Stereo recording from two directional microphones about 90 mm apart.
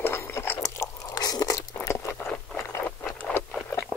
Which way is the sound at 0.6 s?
40° left (ahead or behind).